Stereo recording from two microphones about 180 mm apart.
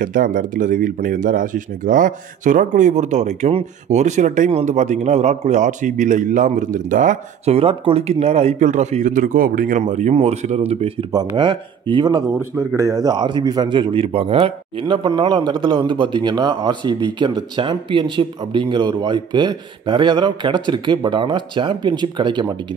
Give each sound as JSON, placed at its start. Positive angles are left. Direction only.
{"t": 0.0, "sound": "speech", "side_deg": -50}
{"t": 11.1, "sound": "a man's voice", "side_deg": -25}